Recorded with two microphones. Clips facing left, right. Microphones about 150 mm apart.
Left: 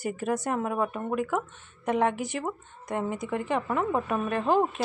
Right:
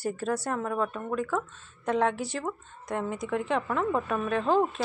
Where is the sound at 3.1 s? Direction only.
Centre (ahead or behind).